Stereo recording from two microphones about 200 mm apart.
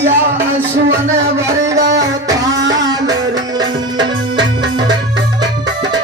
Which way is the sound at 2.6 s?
65° right (ahead or behind).